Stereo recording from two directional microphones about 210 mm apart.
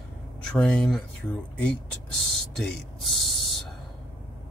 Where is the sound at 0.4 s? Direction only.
5° left (ahead or behind).